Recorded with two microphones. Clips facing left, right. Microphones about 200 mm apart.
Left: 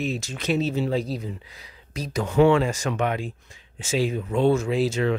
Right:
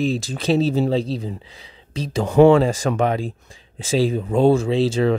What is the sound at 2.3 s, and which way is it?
Speech, 40° right (ahead or behind).